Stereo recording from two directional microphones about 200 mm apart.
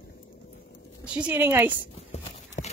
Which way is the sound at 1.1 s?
5° right (ahead or behind).